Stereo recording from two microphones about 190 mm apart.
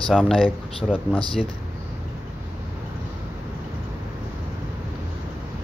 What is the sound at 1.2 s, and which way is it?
Speech, 30° left (ahead or behind).